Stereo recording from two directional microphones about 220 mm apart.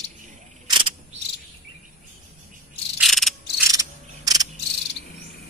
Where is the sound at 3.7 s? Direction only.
15° right (ahead or behind).